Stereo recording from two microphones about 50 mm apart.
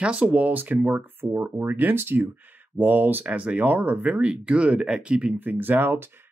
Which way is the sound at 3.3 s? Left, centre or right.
Right.